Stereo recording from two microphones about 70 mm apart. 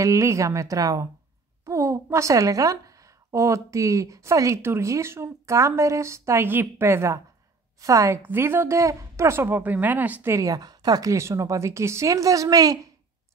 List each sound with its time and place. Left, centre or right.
0.0 s a woman's voice: right
4.6 s a woman's voice: right
8.2 s speech: right
9.6 s speech: right
10.4 s speech: right
11.1 s a woman's voice: right